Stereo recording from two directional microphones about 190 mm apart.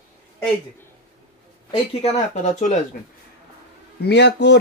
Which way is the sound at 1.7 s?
35° left (ahead or behind).